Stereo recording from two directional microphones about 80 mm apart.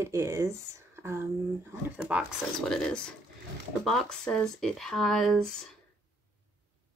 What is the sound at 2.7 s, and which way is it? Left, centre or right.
Speech, centre.